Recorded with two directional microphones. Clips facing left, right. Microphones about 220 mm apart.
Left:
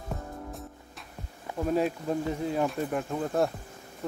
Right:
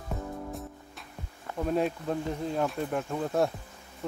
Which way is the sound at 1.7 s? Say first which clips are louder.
Left 1 dB; centre (ahead or behind).